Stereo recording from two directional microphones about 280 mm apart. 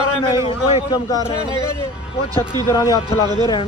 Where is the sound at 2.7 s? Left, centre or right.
Centre.